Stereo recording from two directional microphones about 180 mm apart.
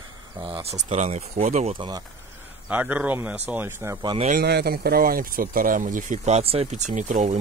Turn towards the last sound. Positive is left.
turn(degrees=-45)  # may be behind; listen again after turning